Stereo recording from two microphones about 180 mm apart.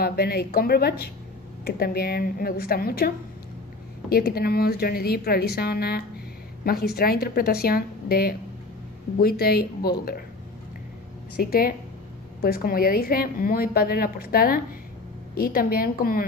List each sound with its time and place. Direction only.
0.0 s a woman's voice: 60° left (ahead or behind)
4.1 s a woman's voice: 60° left (ahead or behind)
12.4 s a woman's voice: 55° left (ahead or behind)